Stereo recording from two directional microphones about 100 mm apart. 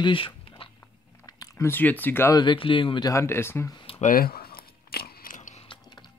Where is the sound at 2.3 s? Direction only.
50° left (ahead or behind).